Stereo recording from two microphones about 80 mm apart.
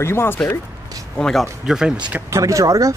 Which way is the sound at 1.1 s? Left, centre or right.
Centre.